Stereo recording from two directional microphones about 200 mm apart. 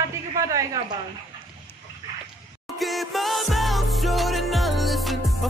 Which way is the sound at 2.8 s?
Centre (ahead or behind).